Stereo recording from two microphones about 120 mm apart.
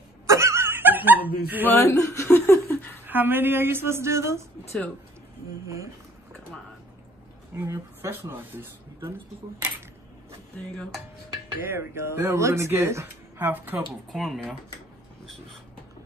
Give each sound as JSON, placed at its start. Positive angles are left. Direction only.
{"t": 0.3, "sound": "a sound", "side_deg": -25}
{"t": 1.7, "sound": "speech", "side_deg": 20}
{"t": 2.3, "sound": "laughter", "side_deg": 20}
{"t": 3.1, "sound": "speech", "side_deg": -15}
{"t": 7.5, "sound": "speech", "side_deg": -25}
{"t": 11.6, "sound": "speech", "side_deg": -20}
{"t": 14.1, "sound": "speech", "side_deg": 0}